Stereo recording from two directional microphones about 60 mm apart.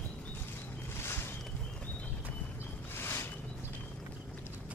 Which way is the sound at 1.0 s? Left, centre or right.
Left.